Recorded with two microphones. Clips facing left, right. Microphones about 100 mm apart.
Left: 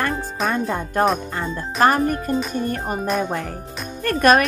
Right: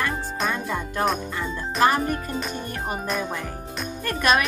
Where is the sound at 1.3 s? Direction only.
45° left (ahead or behind).